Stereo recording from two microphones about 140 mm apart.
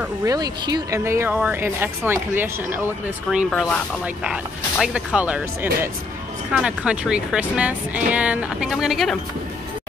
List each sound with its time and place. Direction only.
0.2 s speech: 25° right (ahead or behind)
3.4 s speech: 5° left (ahead or behind)
4.0 s speech: 5° right (ahead or behind)